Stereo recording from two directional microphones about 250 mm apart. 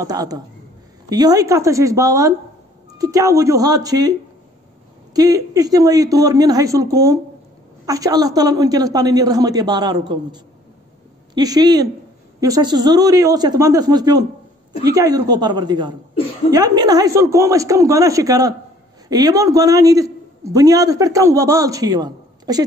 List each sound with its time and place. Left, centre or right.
0.0 s a man's voice: centre
5.1 s a man's voice: centre